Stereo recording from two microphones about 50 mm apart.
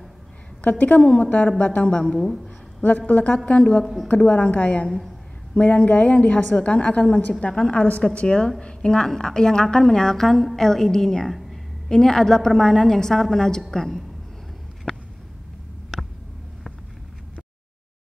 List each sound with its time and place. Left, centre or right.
0.6 s a woman's voice: left
1.9 s a woman's voice: centre
2.1 s a woman's voice: centre
3.1 s a woman's voice: left
3.8 s a woman's voice: centre
4.1 s a woman's voice: left
4.8 s a woman's voice: centre
5.5 s a woman's voice: left
7.3 s a woman's voice: centre
7.7 s a woman's voice: left; by 11.3 s centre
11.3 s a sound: centre
11.9 s a woman's voice: centre